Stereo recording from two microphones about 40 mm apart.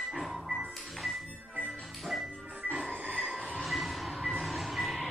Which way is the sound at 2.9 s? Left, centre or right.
Right.